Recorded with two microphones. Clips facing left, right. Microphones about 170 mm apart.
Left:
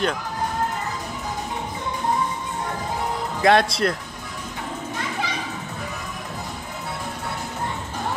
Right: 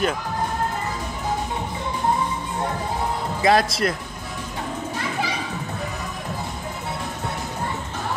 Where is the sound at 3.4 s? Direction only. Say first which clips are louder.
Left 1 dB; centre (ahead or behind).